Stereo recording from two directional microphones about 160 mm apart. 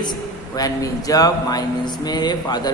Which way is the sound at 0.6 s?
20° left (ahead or behind).